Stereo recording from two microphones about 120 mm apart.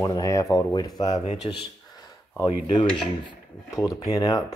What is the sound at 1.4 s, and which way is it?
Speech, 55° left (ahead or behind).